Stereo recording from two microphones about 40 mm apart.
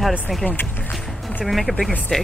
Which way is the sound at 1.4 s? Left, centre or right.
Centre.